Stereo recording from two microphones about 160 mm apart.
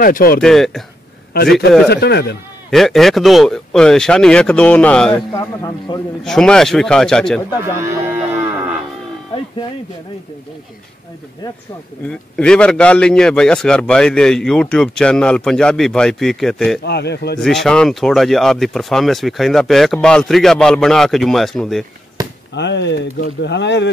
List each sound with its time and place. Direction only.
0.0 s speech: 65° left (ahead or behind)
0.4 s a man's voice: 5° left (ahead or behind)
1.3 s a man's voice: 70° left (ahead or behind)
1.9 s speech: 90° left
2.7 s a man's voice: centre (ahead or behind)
5.3 s a man's voice: 20° left (ahead or behind)
6.2 s a man's voice: 5° left (ahead or behind)
12.1 s a man's voice: 5° left (ahead or behind)
16.8 s speech: 90° left
17.4 s a man's voice: centre (ahead or behind)
22.5 s speech: 90° left